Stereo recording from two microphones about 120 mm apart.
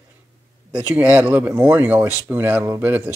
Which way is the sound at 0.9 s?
10° right (ahead or behind).